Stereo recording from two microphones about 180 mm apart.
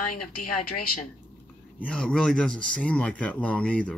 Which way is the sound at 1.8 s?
5° left (ahead or behind).